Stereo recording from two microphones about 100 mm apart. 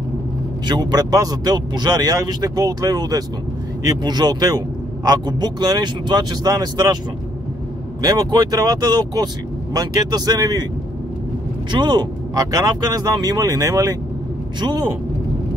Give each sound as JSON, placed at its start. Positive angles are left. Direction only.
{"t": 0.7, "sound": "speech", "side_deg": -45}
{"t": 8.0, "sound": "speech", "side_deg": -45}
{"t": 11.7, "sound": "speech", "side_deg": -45}
{"t": 14.6, "sound": "speech", "side_deg": -50}